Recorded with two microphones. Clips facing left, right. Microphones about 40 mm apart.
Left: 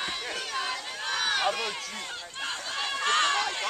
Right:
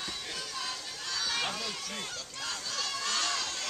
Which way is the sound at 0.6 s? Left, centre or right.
Left.